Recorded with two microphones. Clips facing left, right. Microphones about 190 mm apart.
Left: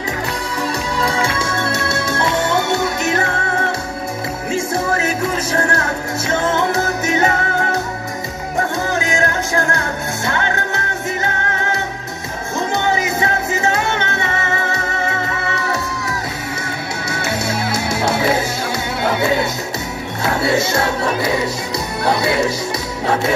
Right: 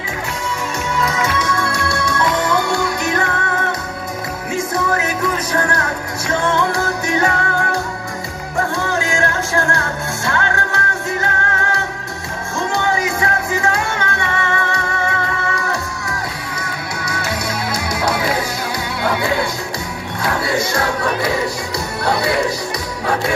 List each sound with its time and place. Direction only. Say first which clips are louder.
0.9 s music: right 1 dB; 30° left (ahead or behind)
4.5 s music: even; 25° left (ahead or behind)